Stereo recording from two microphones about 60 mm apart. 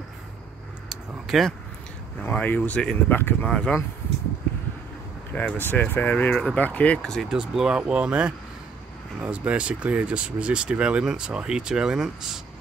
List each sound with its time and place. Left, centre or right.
1.2 s speech: centre
2.3 s speech: left
3.1 s speech: left
3.4 s speech: centre
5.3 s speech: left
5.6 s speech: left
7.0 s speech: centre
7.2 s speech: centre